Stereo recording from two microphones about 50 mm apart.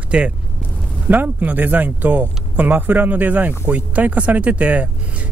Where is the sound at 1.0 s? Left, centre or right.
Right.